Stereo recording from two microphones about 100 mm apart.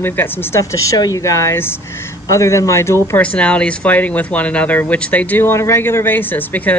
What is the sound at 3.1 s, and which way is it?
Speech, 15° left (ahead or behind).